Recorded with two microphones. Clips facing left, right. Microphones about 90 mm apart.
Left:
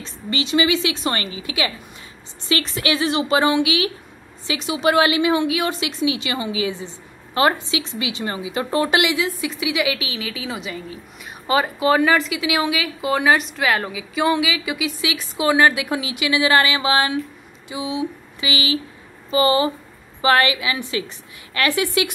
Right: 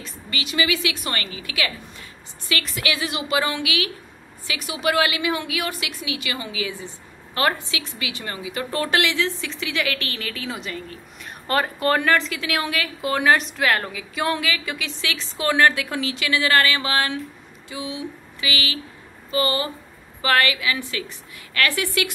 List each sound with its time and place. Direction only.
0.0 s a woman's voice: 25° left (ahead or behind)
17.6 s a sound: 20° left (ahead or behind)
19.3 s a woman's voice: 20° left (ahead or behind)